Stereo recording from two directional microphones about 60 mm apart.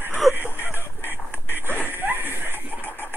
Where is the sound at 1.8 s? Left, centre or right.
Right.